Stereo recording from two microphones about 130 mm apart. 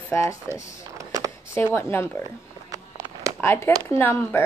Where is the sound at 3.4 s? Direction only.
20° left (ahead or behind).